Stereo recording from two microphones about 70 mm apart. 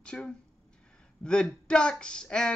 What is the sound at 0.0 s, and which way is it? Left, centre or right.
Speech, centre.